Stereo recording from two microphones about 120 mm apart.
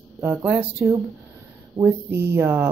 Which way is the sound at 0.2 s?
15° right (ahead or behind).